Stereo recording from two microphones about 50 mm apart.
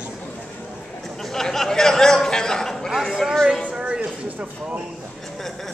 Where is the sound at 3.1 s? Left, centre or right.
Centre.